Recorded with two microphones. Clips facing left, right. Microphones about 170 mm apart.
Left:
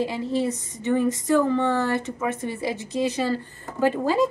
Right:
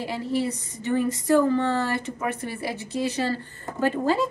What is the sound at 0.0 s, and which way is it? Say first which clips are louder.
A woman's voice: left 2 dB; 20° left (ahead or behind).